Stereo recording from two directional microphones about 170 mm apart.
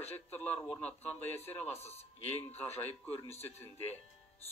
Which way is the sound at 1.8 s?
35° left (ahead or behind).